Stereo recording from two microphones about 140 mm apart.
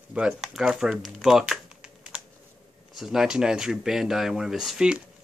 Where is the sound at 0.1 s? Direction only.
5° right (ahead or behind).